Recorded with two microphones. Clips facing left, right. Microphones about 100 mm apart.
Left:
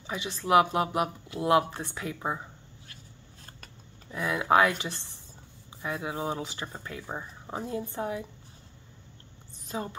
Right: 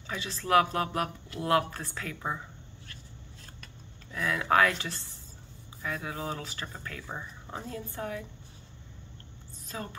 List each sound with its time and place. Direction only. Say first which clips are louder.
0.0 s speech: left 2 dB; 20° left (ahead or behind)
4.1 s speech: left 2 dB; 20° left (ahead or behind)
9.7 s speech: left 5 dB; 20° left (ahead or behind)